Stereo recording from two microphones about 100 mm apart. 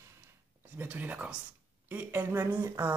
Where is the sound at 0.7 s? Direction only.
15° right (ahead or behind).